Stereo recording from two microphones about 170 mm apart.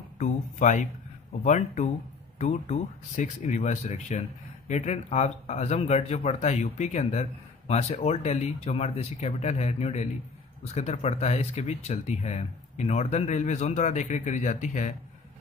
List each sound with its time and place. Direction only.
0.2 s speech: 45° left (ahead or behind)